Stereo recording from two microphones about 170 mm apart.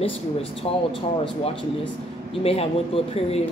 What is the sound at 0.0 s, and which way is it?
Speech, 35° left (ahead or behind).